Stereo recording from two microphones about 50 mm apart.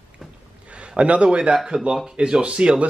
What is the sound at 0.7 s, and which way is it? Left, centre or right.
Speech, right.